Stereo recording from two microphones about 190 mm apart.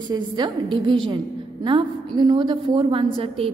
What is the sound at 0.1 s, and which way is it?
A woman's voice, 25° right (ahead or behind).